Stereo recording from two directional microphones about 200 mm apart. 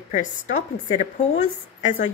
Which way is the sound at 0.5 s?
35° left (ahead or behind).